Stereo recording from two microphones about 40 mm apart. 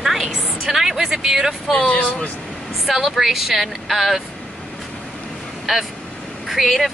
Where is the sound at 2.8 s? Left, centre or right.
Centre.